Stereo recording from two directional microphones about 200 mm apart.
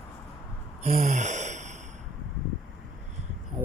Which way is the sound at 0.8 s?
35° right (ahead or behind).